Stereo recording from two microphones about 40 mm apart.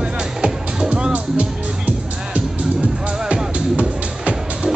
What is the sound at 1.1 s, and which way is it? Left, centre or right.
Music, right.